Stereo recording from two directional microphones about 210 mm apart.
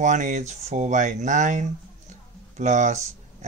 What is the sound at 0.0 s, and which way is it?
Speech, 35° right (ahead or behind).